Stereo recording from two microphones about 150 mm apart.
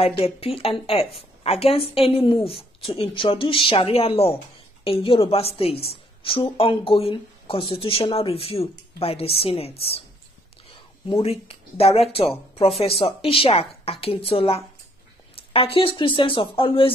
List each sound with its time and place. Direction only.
0.0 s speech: 40° left (ahead or behind)
11.2 s speech: 40° left (ahead or behind)